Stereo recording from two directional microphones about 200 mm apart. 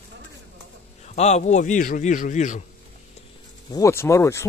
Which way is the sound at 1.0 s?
35° left (ahead or behind).